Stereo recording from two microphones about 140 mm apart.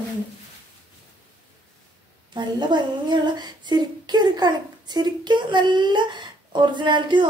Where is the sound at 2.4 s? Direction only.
35° right (ahead or behind).